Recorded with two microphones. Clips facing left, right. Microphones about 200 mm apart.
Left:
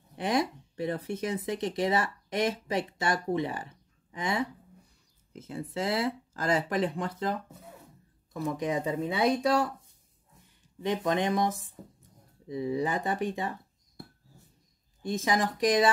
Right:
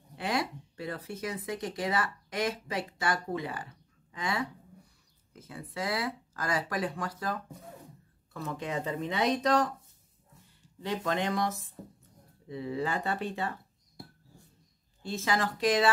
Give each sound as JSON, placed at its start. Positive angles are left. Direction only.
{"t": 0.1, "sound": "speech", "side_deg": 20}
{"t": 10.8, "sound": "speech", "side_deg": 20}
{"t": 15.0, "sound": "speech", "side_deg": 15}